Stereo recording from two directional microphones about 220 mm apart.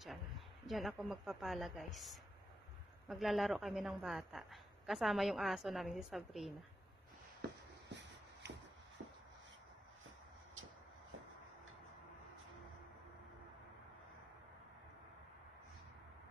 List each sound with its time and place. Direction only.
0.7 s a woman's voice: centre (ahead or behind)
7.9 s shuffle: 55° right (ahead or behind)